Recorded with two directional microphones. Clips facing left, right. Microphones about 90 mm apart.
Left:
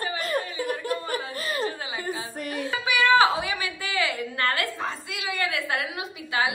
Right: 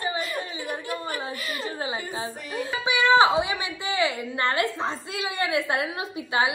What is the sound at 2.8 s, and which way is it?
A woman's voice, 25° right (ahead or behind).